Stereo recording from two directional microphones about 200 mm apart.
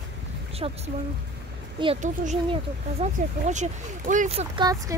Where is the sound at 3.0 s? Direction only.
35° right (ahead or behind).